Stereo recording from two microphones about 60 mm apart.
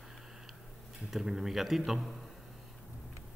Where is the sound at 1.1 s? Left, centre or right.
Centre.